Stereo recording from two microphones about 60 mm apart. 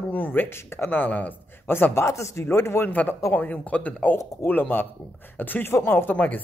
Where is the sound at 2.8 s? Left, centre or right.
Left.